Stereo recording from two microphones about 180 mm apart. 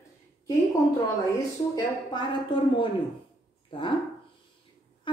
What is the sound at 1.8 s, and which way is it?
Speech, 25° left (ahead or behind).